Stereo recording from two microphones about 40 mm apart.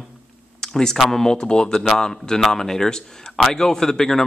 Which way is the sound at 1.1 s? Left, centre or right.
Centre.